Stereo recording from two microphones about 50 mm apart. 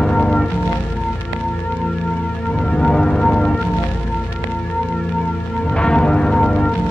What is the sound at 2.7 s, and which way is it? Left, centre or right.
Music, centre.